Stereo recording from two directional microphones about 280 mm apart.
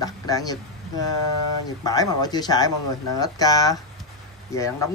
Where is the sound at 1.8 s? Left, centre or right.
Centre.